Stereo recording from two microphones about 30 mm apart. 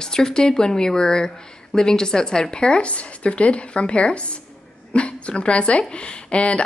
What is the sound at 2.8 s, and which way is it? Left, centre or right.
A woman's voice, left.